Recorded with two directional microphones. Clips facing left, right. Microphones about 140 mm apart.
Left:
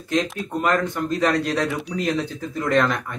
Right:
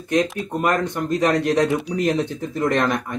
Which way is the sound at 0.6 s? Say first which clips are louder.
Even; 20° right (ahead or behind).